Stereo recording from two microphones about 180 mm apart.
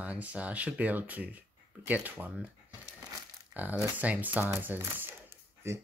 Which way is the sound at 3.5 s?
10° right (ahead or behind).